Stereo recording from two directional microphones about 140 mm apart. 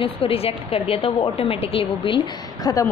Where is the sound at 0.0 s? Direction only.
45° left (ahead or behind).